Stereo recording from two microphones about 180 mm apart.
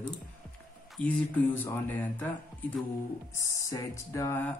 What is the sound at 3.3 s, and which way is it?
Speech, 20° left (ahead or behind).